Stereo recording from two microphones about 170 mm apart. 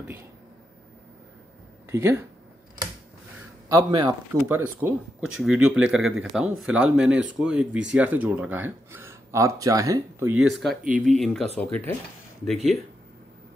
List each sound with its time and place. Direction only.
1.9 s speech: 15° right (ahead or behind)
3.6 s a man's voice: 25° right (ahead or behind)
4.3 s speech: 10° right (ahead or behind)
11.0 s speech: centre (ahead or behind)